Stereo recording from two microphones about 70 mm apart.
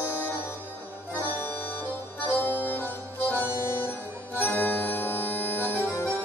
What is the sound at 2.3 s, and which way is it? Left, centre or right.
Music, left.